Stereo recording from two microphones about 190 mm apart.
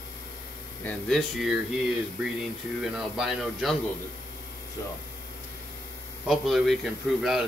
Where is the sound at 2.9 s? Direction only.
Centre (ahead or behind).